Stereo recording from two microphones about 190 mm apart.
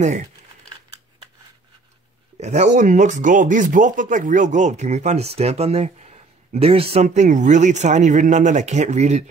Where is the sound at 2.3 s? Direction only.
35° right (ahead or behind).